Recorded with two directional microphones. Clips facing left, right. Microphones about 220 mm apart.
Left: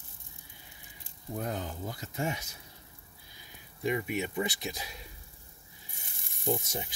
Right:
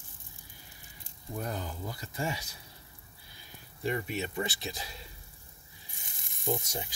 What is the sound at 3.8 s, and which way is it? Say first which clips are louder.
Speech: left 2 dB; 15° left (ahead or behind).